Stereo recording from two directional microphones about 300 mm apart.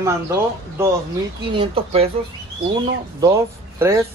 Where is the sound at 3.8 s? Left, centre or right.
Centre.